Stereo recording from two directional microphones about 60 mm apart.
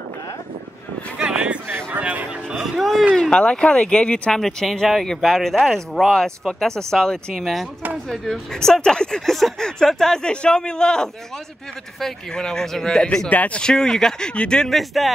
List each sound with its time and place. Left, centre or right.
1.1 s a sound: centre
2.5 s speech: centre
3.2 s speech: centre
13.3 s speech: left
13.6 s speech: centre
14.7 s speech: centre